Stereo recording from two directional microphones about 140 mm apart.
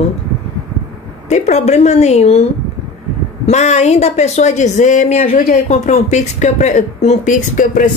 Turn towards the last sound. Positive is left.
turn(degrees=70)  # may be behind; listen again after turning